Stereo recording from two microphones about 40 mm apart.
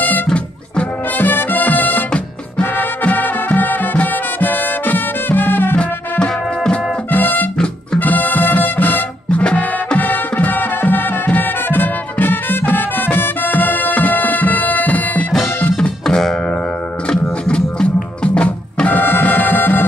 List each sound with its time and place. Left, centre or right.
1.1 s music: left
3.0 s music: left
5.8 s music: left
7.1 s music: left
7.5 s music: centre
8.0 s music: left
17.1 s music: left
18.9 s music: left